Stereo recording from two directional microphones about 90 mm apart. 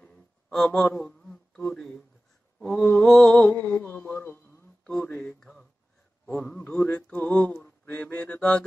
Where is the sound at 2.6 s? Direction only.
5° left (ahead or behind).